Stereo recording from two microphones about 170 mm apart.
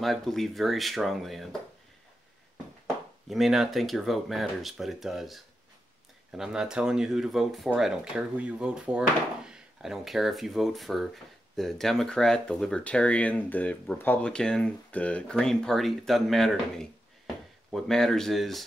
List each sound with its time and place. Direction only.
0.0 s speech: centre (ahead or behind)
3.3 s speech: centre (ahead or behind)